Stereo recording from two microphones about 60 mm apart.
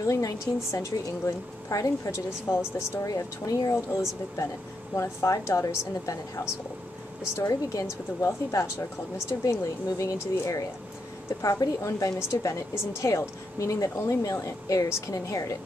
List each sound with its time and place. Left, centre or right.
0.0 s speech: left
2.5 s speech: left
3.1 s a woman's voice: left
3.9 s speech: left
7.3 s a woman's voice: left
7.8 s speech: left
11.6 s a woman's voice: left
12.2 s speech: left
14.0 s a woman's voice: left
14.9 s speech: left
15.1 s a woman's voice: left